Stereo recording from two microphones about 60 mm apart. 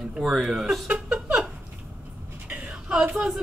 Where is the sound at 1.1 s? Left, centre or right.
Right.